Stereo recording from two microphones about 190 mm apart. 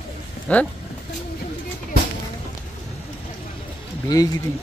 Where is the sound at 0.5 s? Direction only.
5° left (ahead or behind).